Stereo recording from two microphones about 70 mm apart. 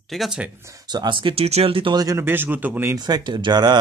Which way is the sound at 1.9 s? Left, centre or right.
Right.